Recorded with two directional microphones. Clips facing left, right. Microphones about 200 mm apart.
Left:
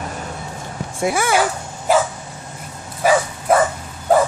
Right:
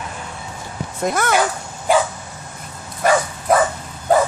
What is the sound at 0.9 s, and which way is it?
Speech, 10° left (ahead or behind).